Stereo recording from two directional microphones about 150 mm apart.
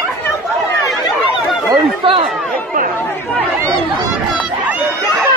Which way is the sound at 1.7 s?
35° right (ahead or behind).